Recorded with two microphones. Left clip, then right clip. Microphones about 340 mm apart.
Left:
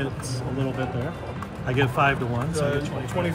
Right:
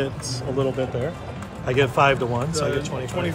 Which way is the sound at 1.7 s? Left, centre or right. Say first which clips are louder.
Right 4 dB; right.